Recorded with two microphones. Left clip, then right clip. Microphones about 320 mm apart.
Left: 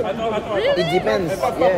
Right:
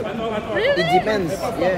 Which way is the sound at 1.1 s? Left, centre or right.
Centre.